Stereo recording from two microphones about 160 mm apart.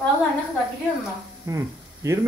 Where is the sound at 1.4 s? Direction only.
20° right (ahead or behind).